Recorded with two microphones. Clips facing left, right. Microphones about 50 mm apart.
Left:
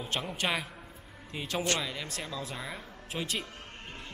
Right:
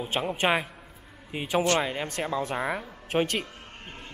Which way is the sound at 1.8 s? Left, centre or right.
Right.